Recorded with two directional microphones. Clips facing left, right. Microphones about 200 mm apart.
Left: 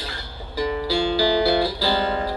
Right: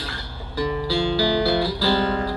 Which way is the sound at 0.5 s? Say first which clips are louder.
Even; 20° left (ahead or behind).